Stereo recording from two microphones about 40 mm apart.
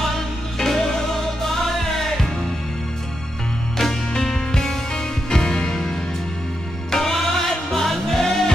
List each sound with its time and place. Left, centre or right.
0.6 s music: centre
4.1 s music: centre